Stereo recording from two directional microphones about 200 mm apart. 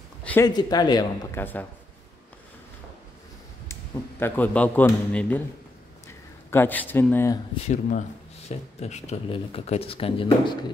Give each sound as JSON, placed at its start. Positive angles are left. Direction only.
{"t": 0.2, "sound": "a sound", "side_deg": 10}
{"t": 0.5, "sound": "speech", "side_deg": 20}
{"t": 1.4, "sound": "a man's voice", "side_deg": 10}
{"t": 4.2, "sound": "a man's voice", "side_deg": 10}
{"t": 7.6, "sound": "speech", "side_deg": 40}